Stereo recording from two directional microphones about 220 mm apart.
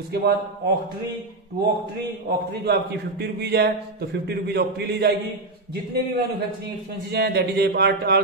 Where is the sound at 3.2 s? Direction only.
45° right (ahead or behind).